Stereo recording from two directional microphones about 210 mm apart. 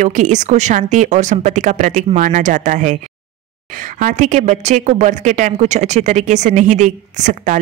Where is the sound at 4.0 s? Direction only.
35° right (ahead or behind).